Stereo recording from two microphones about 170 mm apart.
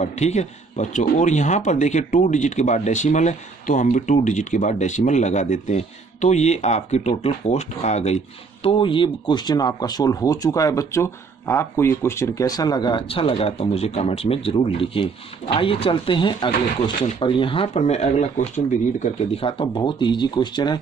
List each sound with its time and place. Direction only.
0.0 s speech: 40° left (ahead or behind); by 20.8 s 25° left (ahead or behind)